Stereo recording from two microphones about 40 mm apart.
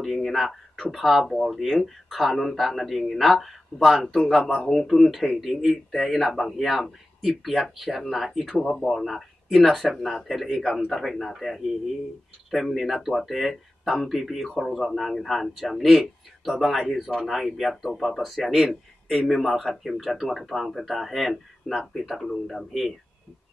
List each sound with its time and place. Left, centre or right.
0.0 s speech: centre
10.6 s speech: centre